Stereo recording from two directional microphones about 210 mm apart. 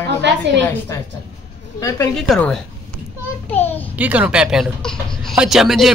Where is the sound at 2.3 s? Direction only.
Centre (ahead or behind).